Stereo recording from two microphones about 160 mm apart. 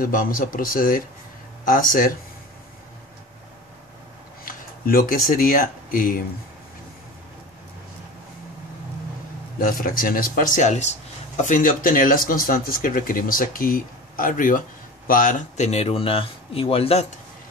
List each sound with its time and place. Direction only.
0.0 s a man's voice: 60° left (ahead or behind)
4.5 s speech: 65° left (ahead or behind)
9.7 s a man's voice: 60° left (ahead or behind); by 17.0 s 35° left (ahead or behind)